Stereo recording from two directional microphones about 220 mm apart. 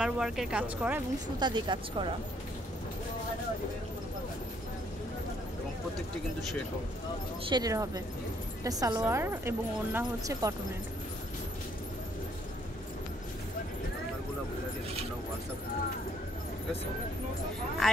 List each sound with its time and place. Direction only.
0.0 s speech: 5° right (ahead or behind)
1.4 s a woman's voice: 20° right (ahead or behind)
7.4 s a woman's voice: 20° right (ahead or behind)